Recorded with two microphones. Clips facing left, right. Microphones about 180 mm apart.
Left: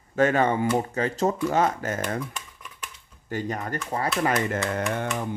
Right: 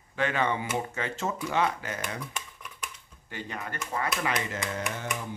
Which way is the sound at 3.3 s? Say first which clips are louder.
Left 8 dB; 40° left (ahead or behind).